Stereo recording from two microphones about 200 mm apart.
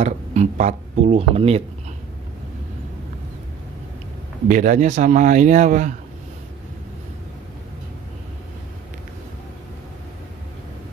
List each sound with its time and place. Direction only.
0.0 s speech: 35° right (ahead or behind)
4.5 s speech: 40° right (ahead or behind)